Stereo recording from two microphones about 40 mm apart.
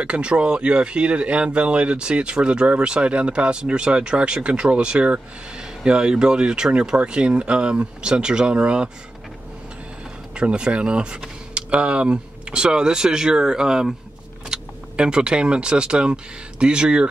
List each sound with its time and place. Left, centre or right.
0.0 s speech: right
10.3 s speech: right